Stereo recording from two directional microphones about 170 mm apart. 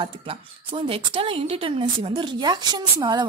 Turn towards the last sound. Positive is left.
turn(degrees=-25)  # may be behind; listen again after turning